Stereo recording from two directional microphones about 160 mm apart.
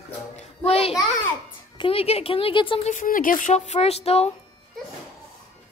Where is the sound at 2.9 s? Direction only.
60° left (ahead or behind); by 4.3 s 40° left (ahead or behind).